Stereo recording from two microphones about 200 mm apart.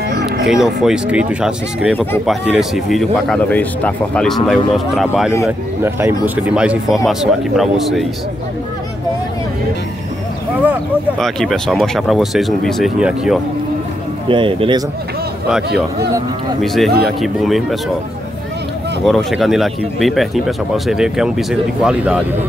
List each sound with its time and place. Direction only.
0.1 s music: 55° right (ahead or behind)
0.5 s speech: centre (ahead or behind)
10.7 s speech: centre (ahead or behind)
14.3 s speech: 25° right (ahead or behind)
16.6 s speech: centre (ahead or behind)
19.0 s speech: centre (ahead or behind)